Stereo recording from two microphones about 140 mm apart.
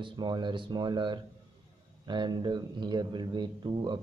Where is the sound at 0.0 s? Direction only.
30° right (ahead or behind).